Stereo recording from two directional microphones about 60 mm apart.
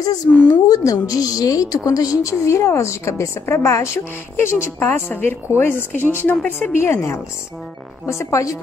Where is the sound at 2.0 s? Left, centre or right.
Left.